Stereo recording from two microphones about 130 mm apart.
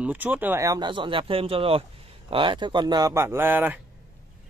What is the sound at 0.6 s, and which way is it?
Speech, 30° right (ahead or behind).